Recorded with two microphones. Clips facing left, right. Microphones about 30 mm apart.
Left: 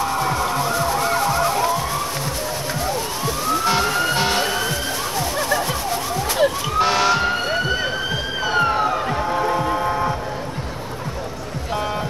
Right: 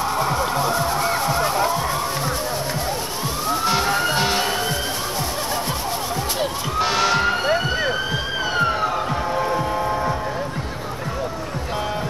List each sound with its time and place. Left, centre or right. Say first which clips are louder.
0.2 s vehicle: even; right
3.8 s music: even; right
4.2 s emergency vehicle: left 1 dB; centre
6.8 s police car: left 2 dB; centre
8.5 s police car: left 3 dB; centre